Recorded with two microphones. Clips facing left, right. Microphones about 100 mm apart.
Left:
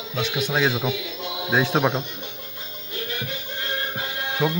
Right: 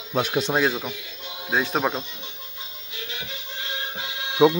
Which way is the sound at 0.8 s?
90° left.